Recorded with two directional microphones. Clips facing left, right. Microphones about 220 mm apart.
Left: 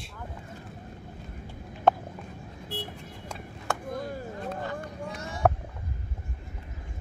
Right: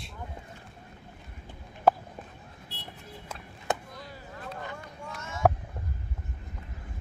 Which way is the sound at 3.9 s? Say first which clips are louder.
Left 11 dB; 50° left (ahead or behind).